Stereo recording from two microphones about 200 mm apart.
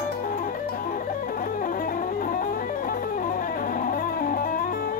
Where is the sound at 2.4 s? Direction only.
40° left (ahead or behind).